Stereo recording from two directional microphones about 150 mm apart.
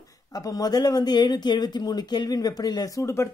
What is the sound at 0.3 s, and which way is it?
A woman's voice, 25° left (ahead or behind).